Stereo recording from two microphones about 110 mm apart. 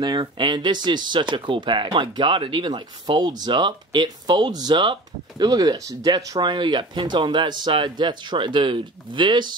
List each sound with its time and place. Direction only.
0.0 s speech: 45° right (ahead or behind)